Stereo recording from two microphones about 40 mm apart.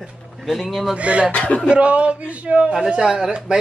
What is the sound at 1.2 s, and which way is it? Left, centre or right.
Speech, left.